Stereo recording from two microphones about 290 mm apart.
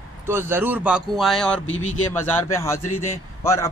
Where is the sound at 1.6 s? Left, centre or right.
Left.